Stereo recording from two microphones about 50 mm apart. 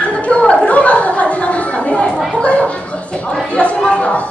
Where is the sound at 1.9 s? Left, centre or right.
Left.